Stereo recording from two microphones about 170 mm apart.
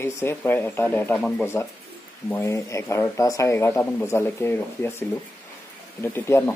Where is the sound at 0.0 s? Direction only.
15° left (ahead or behind).